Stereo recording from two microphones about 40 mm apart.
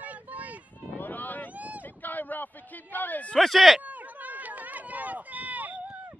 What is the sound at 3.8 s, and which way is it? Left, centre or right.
Run, right.